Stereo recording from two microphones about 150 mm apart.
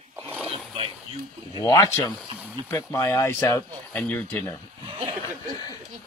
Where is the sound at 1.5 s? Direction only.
25° left (ahead or behind).